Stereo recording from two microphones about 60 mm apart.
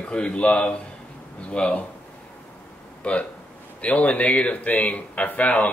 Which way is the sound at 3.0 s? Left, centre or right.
Left.